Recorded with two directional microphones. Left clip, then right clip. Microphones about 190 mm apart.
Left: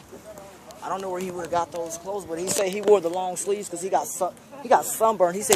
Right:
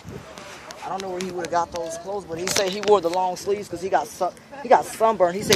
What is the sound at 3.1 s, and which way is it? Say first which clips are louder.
Speech: right 3 dB; 10° right (ahead or behind).